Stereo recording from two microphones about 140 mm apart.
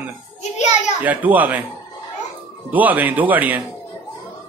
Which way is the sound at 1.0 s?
10° right (ahead or behind).